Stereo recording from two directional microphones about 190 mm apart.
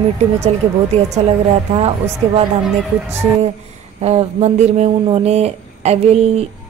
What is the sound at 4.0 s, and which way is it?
Speech, 35° right (ahead or behind).